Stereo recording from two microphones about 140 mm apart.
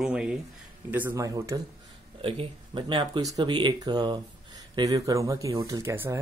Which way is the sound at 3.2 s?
25° right (ahead or behind).